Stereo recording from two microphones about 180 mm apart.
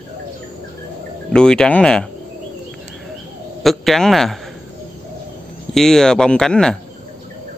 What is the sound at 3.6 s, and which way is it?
Speech, centre (ahead or behind).